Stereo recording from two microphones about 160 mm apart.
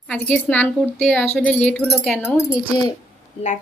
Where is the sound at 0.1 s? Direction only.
10° left (ahead or behind).